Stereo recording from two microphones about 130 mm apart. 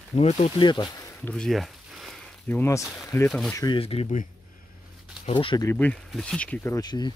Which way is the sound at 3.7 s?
45° left (ahead or behind).